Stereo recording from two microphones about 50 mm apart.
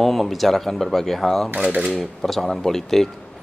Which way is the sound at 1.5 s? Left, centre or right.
Right.